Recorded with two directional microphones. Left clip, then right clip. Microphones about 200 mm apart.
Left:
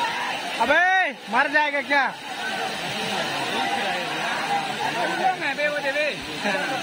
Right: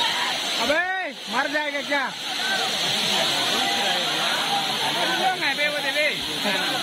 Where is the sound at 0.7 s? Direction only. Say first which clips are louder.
Left 5 dB; 20° left (ahead or behind).